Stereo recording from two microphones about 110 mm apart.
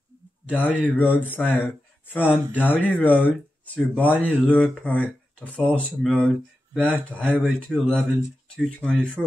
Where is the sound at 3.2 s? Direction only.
15° left (ahead or behind).